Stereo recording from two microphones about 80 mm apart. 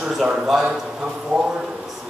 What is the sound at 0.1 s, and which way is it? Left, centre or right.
A man's voice, centre.